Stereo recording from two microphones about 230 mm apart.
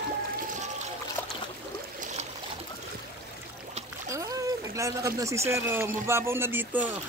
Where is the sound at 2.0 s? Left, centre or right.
Right.